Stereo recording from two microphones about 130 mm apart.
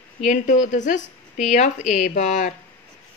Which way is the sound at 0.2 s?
70° left (ahead or behind).